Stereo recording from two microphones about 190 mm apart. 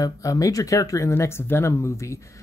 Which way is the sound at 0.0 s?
15° left (ahead or behind).